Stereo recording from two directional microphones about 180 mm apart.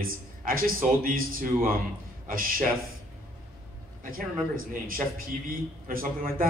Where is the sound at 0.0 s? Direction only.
55° right (ahead or behind).